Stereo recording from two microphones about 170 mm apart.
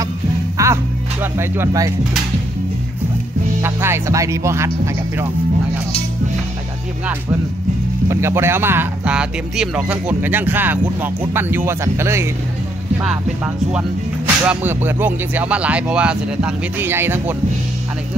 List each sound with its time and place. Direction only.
0.6 s music: 15° right (ahead or behind)
1.2 s speech: 15° right (ahead or behind)
3.6 s speech: 15° right (ahead or behind)
8.1 s speech: 15° right (ahead or behind)
13.7 s speech: 5° right (ahead or behind)